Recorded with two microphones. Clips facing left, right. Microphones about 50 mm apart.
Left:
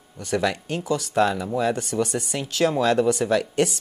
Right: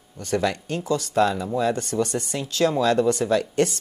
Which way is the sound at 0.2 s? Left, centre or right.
Centre.